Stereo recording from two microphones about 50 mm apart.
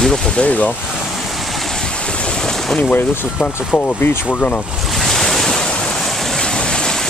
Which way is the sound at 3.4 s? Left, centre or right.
Left.